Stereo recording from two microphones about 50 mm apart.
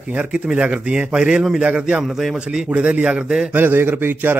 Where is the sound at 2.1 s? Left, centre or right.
Centre.